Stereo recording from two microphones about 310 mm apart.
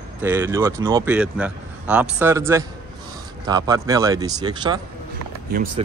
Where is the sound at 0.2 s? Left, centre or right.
Centre.